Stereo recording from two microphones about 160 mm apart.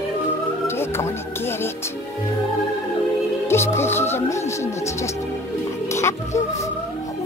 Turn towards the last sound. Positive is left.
turn(degrees=15)  # may be behind; listen again after turning